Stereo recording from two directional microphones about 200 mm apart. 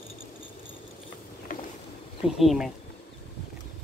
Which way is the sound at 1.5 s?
40° left (ahead or behind).